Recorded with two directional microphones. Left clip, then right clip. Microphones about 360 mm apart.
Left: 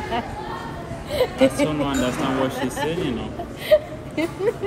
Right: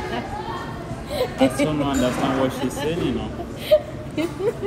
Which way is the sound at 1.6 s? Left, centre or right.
Centre.